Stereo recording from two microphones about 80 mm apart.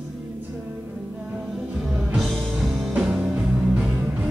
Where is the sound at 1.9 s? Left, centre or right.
Centre.